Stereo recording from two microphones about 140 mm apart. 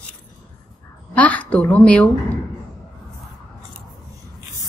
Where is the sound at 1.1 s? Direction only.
10° left (ahead or behind).